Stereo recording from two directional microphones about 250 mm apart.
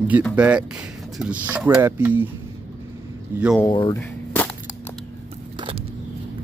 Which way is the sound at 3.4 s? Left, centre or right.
Centre.